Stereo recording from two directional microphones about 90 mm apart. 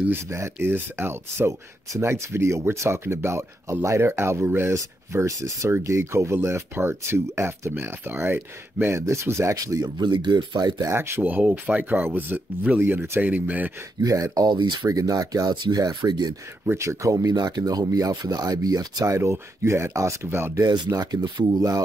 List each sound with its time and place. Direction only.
0.0 s speech: 25° right (ahead or behind)
4.7 s speech: 35° right (ahead or behind)
10.1 s speech: 55° right (ahead or behind)
10.9 s speech: 25° right (ahead or behind)
14.0 s speech: 40° right (ahead or behind); by 14.9 s 60° right (ahead or behind)
14.9 s speech: 40° right (ahead or behind)
16.6 s speech: 30° right (ahead or behind)
20.6 s speech: 50° right (ahead or behind)